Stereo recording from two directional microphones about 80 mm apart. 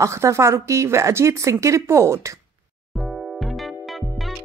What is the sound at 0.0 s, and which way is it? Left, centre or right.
A woman's voice, right.